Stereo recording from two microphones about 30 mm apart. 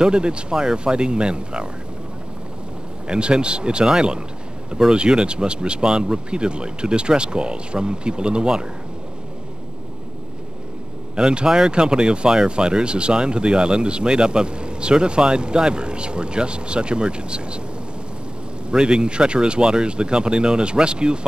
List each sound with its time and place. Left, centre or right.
0.0 s speech: right
3.1 s speech: right
11.1 s speech: right
18.7 s speech: right